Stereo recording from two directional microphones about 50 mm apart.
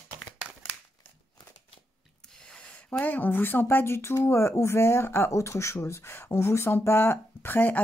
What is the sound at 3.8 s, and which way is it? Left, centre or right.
Speech, left.